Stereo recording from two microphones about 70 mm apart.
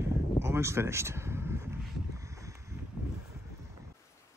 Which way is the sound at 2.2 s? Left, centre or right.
Right.